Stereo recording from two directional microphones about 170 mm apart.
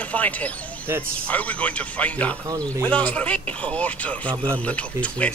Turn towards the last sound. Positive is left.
turn(degrees=10)  # may be behind; listen again after turning